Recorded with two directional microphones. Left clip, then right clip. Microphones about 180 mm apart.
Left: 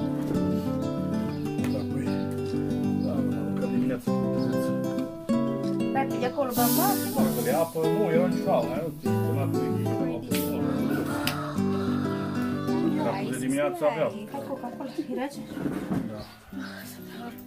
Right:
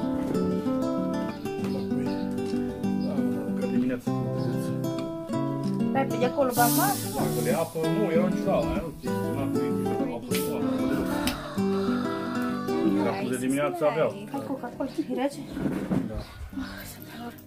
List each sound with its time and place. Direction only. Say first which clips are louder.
0.0 s music: right 1 dB; centre (ahead or behind)
9.0 s speech: even; centre (ahead or behind)
10.8 s music: right 1 dB; centre (ahead or behind)
13.4 s speech: left 1 dB; 15° right (ahead or behind)
13.8 s speech: right 2 dB; centre (ahead or behind)